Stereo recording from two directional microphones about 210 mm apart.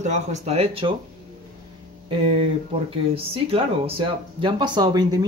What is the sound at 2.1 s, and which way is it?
Speech, 25° right (ahead or behind).